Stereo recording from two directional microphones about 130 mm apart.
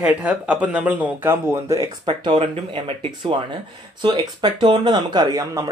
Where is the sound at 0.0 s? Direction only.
10° right (ahead or behind).